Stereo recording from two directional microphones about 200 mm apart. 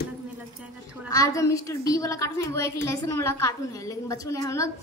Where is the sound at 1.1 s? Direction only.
15° left (ahead or behind).